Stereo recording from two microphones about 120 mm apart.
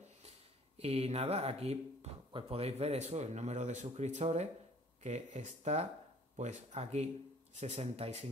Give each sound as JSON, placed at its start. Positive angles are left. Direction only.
{"t": 0.7, "sound": "speech", "side_deg": -60}